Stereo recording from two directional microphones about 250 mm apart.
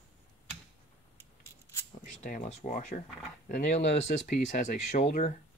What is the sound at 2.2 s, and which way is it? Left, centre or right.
Speech, left.